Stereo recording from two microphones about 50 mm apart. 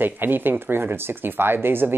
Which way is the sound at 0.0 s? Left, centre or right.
Right.